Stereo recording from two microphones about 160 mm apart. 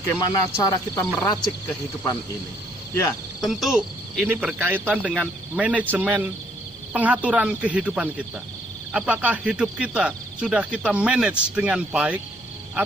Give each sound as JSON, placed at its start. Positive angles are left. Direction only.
{"t": 0.1, "sound": "speech", "side_deg": 15}
{"t": 3.3, "sound": "speech", "side_deg": 0}